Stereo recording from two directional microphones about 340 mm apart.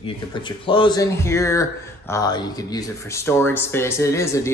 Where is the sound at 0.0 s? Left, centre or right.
Centre.